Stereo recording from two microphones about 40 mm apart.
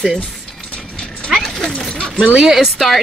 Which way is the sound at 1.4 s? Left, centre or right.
Centre.